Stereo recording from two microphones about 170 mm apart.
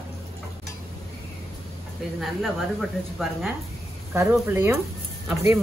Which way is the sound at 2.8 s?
Centre (ahead or behind).